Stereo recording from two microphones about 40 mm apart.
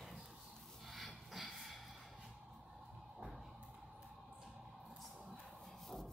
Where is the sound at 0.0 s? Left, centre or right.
Centre.